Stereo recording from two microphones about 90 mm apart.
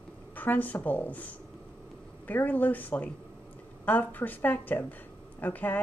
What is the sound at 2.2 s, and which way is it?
A woman's voice, 20° left (ahead or behind).